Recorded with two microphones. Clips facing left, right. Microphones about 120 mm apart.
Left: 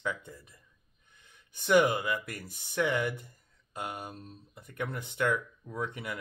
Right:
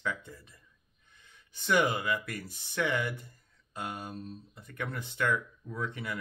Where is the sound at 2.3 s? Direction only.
50° left (ahead or behind).